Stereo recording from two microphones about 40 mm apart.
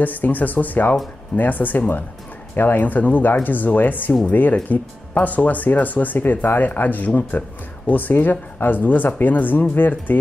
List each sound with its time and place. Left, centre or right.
0.0 s speech: left